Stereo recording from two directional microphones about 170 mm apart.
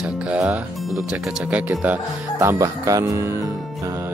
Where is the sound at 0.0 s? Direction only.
5° right (ahead or behind).